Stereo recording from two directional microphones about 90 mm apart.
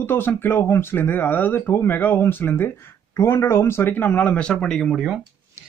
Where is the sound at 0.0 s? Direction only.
25° left (ahead or behind).